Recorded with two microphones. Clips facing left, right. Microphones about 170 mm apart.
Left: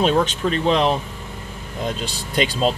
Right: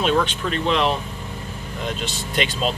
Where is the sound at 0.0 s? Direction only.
40° left (ahead or behind).